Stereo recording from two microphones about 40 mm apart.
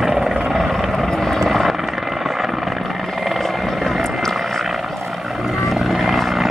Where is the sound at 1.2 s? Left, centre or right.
Centre.